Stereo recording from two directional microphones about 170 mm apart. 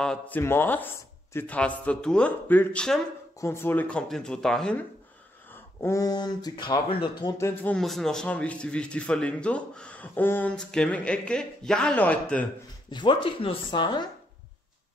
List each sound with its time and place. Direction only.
0.0 s speech: 5° left (ahead or behind)
5.5 s speech: 15° left (ahead or behind)
7.7 s speech: centre (ahead or behind)
12.9 s speech: 25° left (ahead or behind)